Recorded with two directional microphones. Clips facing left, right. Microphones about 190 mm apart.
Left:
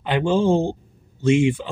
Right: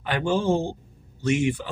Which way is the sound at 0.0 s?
20° left (ahead or behind).